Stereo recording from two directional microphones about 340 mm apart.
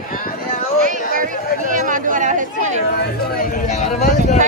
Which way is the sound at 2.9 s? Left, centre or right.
Left.